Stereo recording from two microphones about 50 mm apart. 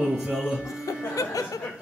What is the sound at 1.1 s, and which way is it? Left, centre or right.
Music, left.